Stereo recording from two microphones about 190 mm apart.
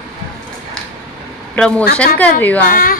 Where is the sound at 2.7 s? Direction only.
50° left (ahead or behind).